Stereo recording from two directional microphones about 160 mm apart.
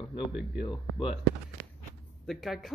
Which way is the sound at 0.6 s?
30° left (ahead or behind).